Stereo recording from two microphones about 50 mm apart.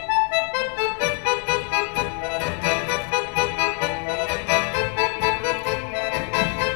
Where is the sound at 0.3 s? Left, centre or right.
Left.